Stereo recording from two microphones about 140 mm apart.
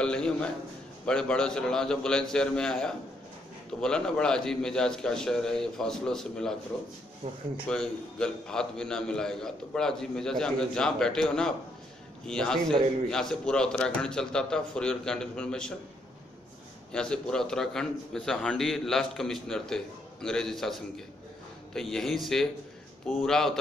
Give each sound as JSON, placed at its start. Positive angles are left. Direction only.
{"t": 0.0, "sound": "a man's voice", "side_deg": 5}
{"t": 7.2, "sound": "speech", "side_deg": -45}
{"t": 7.6, "sound": "a man's voice", "side_deg": 5}
{"t": 16.9, "sound": "a man's voice", "side_deg": 5}